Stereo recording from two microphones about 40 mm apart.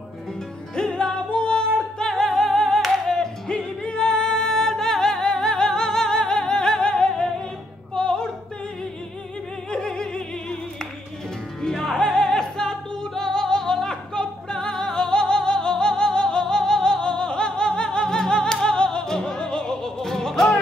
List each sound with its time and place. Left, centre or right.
0.7 s music: left
7.9 s opera: centre
9.7 s opera: centre
11.6 s music: centre